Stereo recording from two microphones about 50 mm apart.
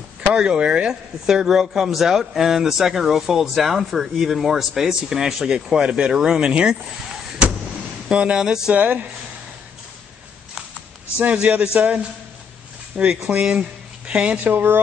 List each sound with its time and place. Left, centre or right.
0.3 s speech: centre
8.1 s speech: right
8.7 s speech: right
11.6 s a man's voice: right
12.9 s speech: right
13.3 s speech: right
14.5 s speech: right